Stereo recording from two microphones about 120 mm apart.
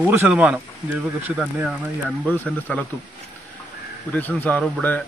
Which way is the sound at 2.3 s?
10° left (ahead or behind).